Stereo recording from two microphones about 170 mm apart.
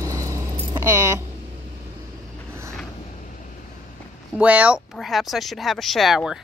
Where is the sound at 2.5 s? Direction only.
15° right (ahead or behind).